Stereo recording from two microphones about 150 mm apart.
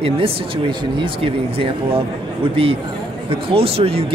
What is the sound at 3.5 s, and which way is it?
Speech, 40° right (ahead or behind).